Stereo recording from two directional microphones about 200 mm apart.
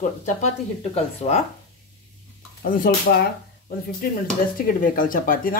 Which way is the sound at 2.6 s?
45° left (ahead or behind).